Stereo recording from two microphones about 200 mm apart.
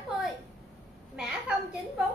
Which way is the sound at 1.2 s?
5° right (ahead or behind).